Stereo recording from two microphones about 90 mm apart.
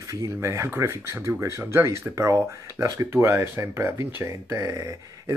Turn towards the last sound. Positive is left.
turn(degrees=-35)  # may be behind; listen again after turning